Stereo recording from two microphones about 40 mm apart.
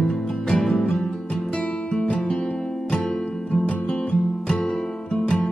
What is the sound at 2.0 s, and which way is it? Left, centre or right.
Music, left.